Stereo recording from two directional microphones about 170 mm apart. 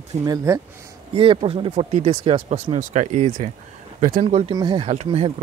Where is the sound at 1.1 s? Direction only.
30° right (ahead or behind); by 4.2 s 50° right (ahead or behind).